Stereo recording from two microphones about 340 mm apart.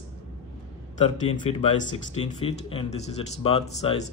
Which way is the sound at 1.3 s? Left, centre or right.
Left.